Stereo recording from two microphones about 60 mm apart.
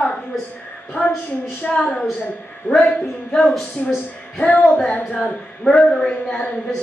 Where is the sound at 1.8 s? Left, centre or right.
Centre.